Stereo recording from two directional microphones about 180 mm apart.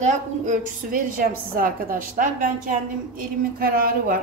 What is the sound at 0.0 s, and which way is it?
A woman's voice, 45° right (ahead or behind).